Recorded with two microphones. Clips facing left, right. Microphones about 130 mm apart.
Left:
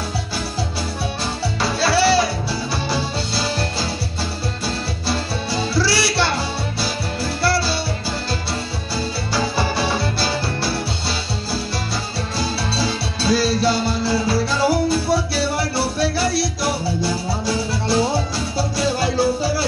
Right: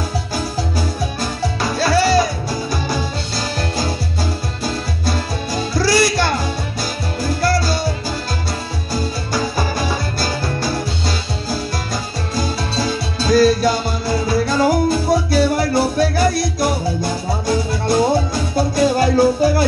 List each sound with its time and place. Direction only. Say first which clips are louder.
1.8 s music: right 2 dB; 45° right (ahead or behind)
5.8 s music: right 5 dB; 45° right (ahead or behind)
7.4 s music: right 2 dB; 45° right (ahead or behind)
8.9 s music: right 2 dB; 45° right (ahead or behind)
12.4 s music: right 2 dB; 45° right (ahead or behind)